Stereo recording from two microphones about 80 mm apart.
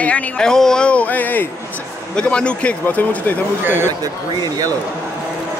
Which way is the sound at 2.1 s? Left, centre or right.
Centre.